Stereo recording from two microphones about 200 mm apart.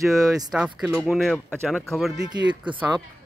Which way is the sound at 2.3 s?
20° right (ahead or behind).